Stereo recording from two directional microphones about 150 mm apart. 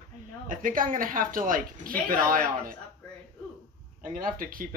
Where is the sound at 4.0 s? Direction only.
65° right (ahead or behind).